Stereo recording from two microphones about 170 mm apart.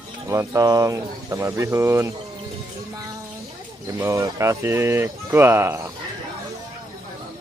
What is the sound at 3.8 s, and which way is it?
Speech, 20° right (ahead or behind).